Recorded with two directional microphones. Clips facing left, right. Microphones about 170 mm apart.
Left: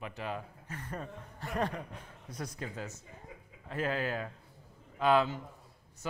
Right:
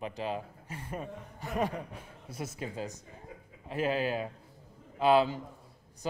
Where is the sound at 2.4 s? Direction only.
25° right (ahead or behind).